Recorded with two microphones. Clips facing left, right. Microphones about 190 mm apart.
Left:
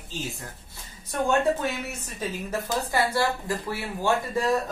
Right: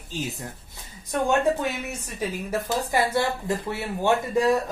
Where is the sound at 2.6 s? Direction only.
20° right (ahead or behind).